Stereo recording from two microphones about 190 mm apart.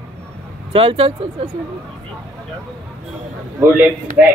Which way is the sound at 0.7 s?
30° right (ahead or behind).